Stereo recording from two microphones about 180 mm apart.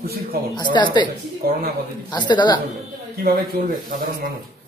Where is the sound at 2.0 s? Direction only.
25° left (ahead or behind).